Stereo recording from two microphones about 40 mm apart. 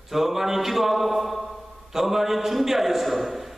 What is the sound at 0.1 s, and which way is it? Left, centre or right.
A man's voice, centre.